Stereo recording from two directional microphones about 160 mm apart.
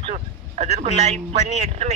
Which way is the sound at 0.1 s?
45° right (ahead or behind).